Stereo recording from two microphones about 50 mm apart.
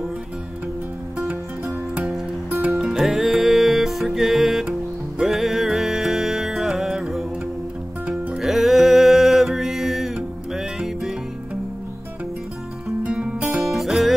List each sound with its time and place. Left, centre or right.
1.1 s music: right
2.8 s music: centre
8.4 s mantra: centre
10.1 s music: centre
13.0 s music: right
13.6 s music: centre